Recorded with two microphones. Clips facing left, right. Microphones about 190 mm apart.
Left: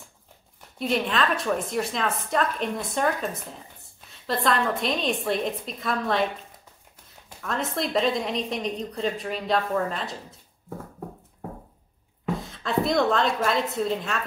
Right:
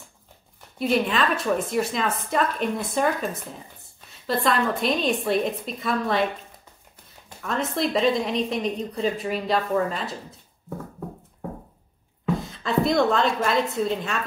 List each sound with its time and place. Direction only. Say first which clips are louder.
0.7 s a woman's voice: right 2 dB; 5° right (ahead or behind)
7.4 s a woman's voice: right 3 dB; centre (ahead or behind)
12.4 s a woman's voice: right 1 dB; centre (ahead or behind)